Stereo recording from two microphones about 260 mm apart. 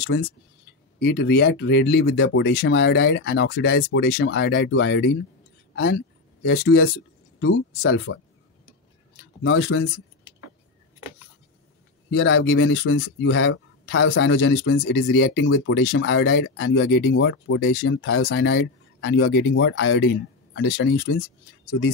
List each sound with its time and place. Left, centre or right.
0.0 s speech: left
6.4 s speech: left
9.4 s speech: left
12.1 s speech: left